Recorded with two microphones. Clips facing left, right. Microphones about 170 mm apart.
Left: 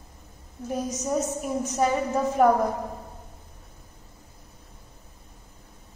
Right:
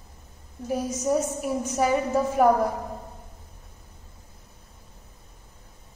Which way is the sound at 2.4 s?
5° right (ahead or behind).